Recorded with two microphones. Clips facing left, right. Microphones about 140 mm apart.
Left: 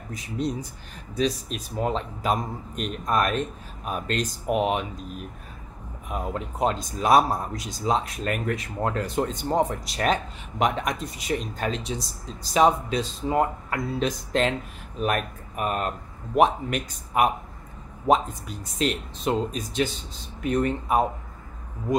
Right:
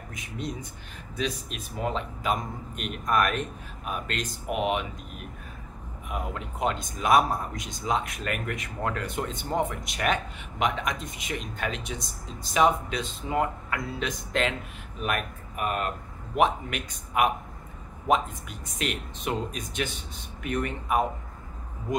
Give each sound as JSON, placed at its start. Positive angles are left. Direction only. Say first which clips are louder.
{"t": 0.1, "sound": "a man's voice", "louder": "left 7 dB", "side_deg": 35}